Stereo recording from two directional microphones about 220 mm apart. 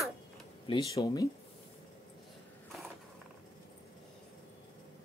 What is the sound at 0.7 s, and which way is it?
Speech, 15° left (ahead or behind).